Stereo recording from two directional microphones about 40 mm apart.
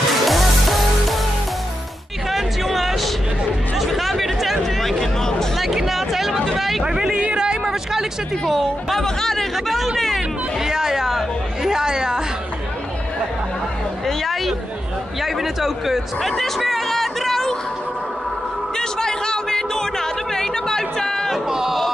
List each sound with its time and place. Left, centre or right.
0.1 s music: centre
2.2 s music: centre
3.7 s chatter: centre
4.9 s music: centre
5.6 s hubbub: centre
6.8 s a sound: centre
8.5 s speech: centre
9.0 s chatter: centre
10.6 s chatter: centre
14.0 s a sound: centre
18.8 s music: centre
21.5 s a sound: centre